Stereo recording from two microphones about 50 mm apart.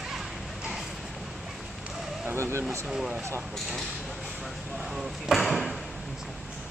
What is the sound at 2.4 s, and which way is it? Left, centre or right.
Speech, right.